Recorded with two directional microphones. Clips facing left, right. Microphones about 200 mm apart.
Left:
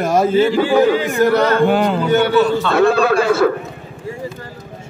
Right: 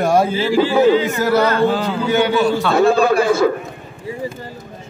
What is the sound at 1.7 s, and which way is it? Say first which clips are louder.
Speech: left 4 dB; 60° left (ahead or behind).